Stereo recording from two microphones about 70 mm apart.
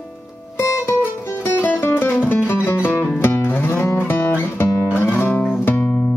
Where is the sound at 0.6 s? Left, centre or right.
Left.